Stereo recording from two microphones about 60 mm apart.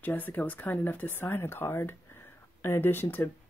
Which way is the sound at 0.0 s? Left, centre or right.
Left.